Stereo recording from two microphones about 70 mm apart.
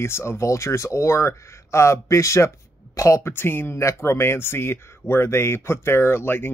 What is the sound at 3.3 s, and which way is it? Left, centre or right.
Speech, left.